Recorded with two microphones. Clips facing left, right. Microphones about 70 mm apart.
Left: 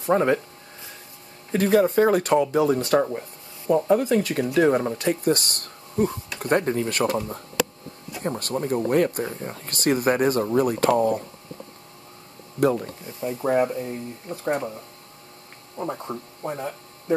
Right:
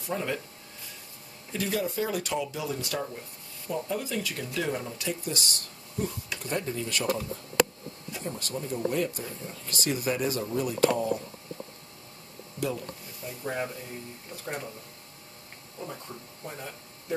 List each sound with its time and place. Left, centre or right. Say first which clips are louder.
0.0 s speech: left 12 dB; left
1.5 s speech: left 11 dB; left
12.5 s speech: left 11 dB; left
14.3 s speech: left 11 dB; left
15.8 s speech: left 10 dB; left